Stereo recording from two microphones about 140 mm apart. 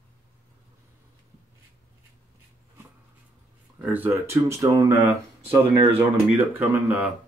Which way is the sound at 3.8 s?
15° right (ahead or behind).